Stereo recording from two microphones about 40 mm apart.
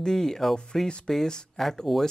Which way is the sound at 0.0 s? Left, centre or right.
Centre.